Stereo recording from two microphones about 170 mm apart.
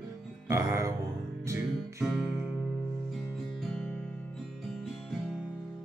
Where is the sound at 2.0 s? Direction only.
Centre (ahead or behind).